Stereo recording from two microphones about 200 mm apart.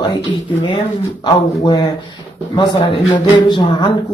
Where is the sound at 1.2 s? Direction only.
20° left (ahead or behind).